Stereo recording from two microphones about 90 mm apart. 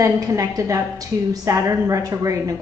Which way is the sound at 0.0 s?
35° right (ahead or behind).